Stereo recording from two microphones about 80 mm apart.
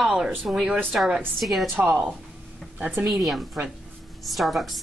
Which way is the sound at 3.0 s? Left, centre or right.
Centre.